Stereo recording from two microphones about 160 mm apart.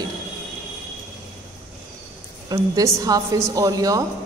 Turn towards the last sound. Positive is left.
turn(degrees=-20)  # may be behind; listen again after turning